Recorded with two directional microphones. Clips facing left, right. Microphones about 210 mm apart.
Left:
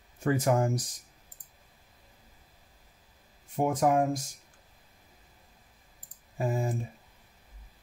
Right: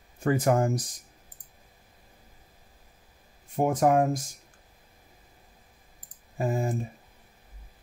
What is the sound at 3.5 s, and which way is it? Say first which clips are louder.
Speech: right 3 dB; 45° right (ahead or behind).